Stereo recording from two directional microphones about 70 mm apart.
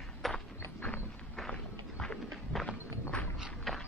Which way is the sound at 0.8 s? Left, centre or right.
Left.